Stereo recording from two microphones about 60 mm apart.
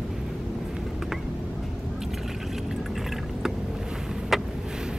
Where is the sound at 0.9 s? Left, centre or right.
Centre.